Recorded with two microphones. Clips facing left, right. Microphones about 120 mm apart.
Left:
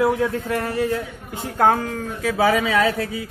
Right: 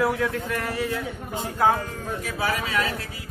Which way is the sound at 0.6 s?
45° left (ahead or behind).